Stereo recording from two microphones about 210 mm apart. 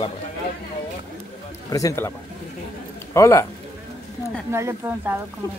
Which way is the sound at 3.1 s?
15° left (ahead or behind).